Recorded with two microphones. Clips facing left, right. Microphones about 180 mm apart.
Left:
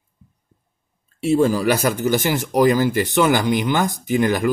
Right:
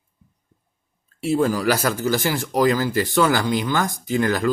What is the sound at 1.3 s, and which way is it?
A man's voice, 25° left (ahead or behind).